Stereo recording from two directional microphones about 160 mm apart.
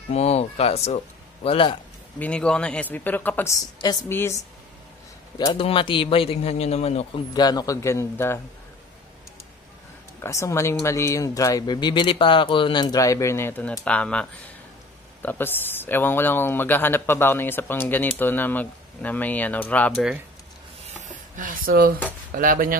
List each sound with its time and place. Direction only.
0.1 s speech: 40° left (ahead or behind)
2.1 s speech: 10° left (ahead or behind)
5.5 s a man's voice: 35° left (ahead or behind)
7.3 s a man's voice: 25° left (ahead or behind)
10.2 s a man's voice: 15° left (ahead or behind)
15.2 s speech: 10° left (ahead or behind)
20.8 s a sound: 45° right (ahead or behind); by 22.0 s 65° right (ahead or behind)
22.3 s speech: 60° right (ahead or behind)